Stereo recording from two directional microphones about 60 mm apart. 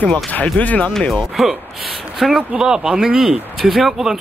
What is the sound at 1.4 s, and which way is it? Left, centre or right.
Speech, centre.